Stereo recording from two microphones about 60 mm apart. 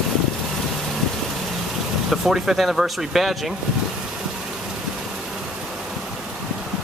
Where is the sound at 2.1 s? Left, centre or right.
Centre.